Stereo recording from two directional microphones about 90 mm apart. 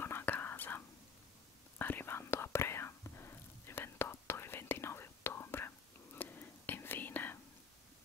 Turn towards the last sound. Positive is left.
turn(degrees=20)  # may be behind; listen again after turning